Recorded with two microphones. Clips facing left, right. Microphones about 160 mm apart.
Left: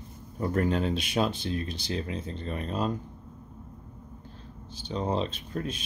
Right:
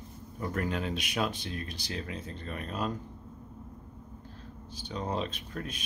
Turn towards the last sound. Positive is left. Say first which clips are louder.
# left 5 dB
turn(degrees=30)  # may be behind; listen again after turning